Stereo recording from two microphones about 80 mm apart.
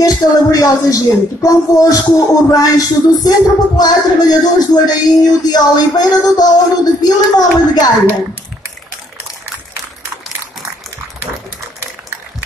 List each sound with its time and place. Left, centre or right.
0.0 s speech: left